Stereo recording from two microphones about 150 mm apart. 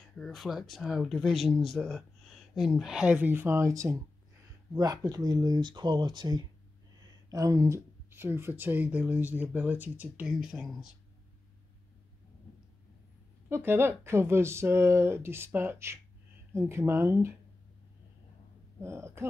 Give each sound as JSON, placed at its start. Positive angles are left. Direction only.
{"t": 0.2, "sound": "speech", "side_deg": 0}
{"t": 13.5, "sound": "speech", "side_deg": -15}
{"t": 18.8, "sound": "speech", "side_deg": -15}